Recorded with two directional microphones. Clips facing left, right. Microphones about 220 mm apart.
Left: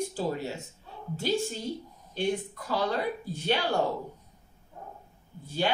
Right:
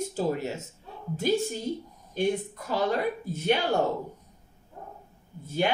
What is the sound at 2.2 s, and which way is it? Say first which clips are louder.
Speech: right 3 dB; 20° right (ahead or behind).